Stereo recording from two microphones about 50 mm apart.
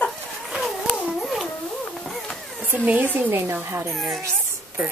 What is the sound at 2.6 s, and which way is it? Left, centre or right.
Speech, right.